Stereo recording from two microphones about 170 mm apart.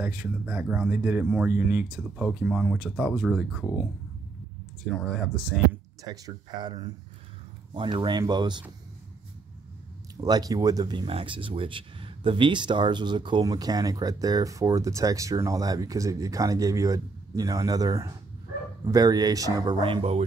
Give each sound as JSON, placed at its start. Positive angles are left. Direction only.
{"t": 0.0, "sound": "speech", "side_deg": -5}
{"t": 5.0, "sound": "speech", "side_deg": 5}
{"t": 6.2, "sound": "speech", "side_deg": -25}
{"t": 10.2, "sound": "speech", "side_deg": -20}